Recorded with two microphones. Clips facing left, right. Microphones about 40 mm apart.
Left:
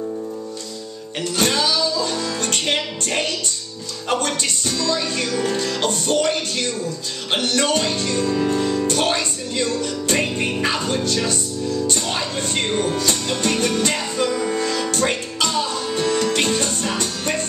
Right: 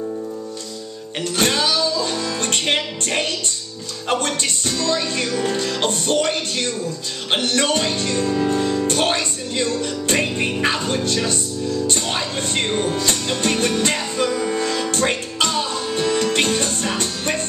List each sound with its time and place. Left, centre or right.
1.3 s music: right
5.3 s music: centre
5.7 s music: right
8.2 s music: centre
8.8 s speech: right
9.7 s music: right
12.1 s music: right
14.3 s music: centre
14.6 s music: right